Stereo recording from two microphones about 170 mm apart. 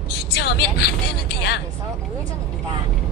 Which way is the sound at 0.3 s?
75° left (ahead or behind).